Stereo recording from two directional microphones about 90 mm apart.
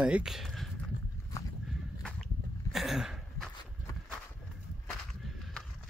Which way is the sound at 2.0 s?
Centre (ahead or behind).